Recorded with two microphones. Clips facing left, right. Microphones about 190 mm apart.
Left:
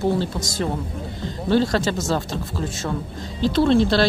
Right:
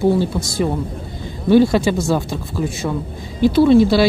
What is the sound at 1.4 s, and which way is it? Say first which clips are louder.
Speech: right 7 dB; 15° right (ahead or behind).